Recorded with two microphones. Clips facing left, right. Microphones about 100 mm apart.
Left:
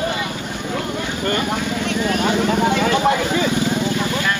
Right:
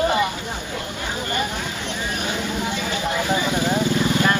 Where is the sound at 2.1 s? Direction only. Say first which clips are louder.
Left 9 dB; 70° left (ahead or behind).